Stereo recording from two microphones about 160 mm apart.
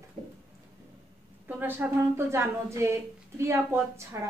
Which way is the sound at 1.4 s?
10° right (ahead or behind).